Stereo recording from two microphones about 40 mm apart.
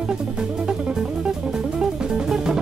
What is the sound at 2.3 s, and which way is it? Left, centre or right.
Music, centre.